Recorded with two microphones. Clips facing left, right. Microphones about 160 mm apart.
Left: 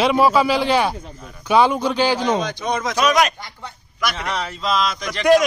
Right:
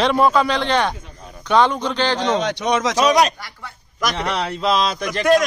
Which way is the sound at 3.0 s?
35° right (ahead or behind).